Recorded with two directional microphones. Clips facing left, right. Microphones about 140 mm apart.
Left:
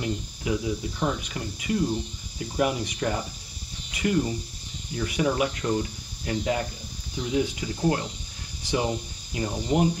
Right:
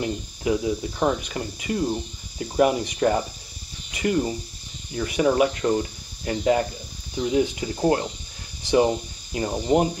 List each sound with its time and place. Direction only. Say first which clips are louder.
0.0 s cricket: right 4 dB; 30° right (ahead or behind)
0.9 s speech: right 5 dB; 40° right (ahead or behind)
3.9 s cricket: right 2 dB; 30° right (ahead or behind)
4.9 s speech: right 5 dB; 30° right (ahead or behind)